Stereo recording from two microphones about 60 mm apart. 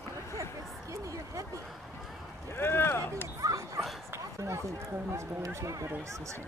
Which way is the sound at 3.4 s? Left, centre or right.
Right.